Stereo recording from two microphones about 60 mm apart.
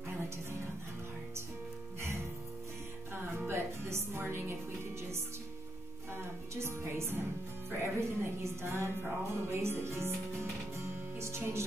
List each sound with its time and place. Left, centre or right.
2.0 s music: right
3.3 s music: right
6.2 s music: right